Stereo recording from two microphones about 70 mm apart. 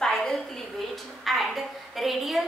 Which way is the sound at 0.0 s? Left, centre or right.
Centre.